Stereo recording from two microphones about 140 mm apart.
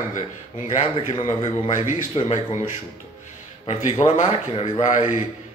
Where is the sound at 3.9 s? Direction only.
45° left (ahead or behind).